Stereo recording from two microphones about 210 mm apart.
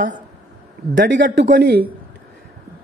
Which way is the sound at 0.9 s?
60° right (ahead or behind).